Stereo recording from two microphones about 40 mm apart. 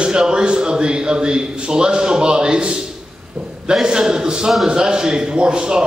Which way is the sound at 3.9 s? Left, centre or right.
Centre.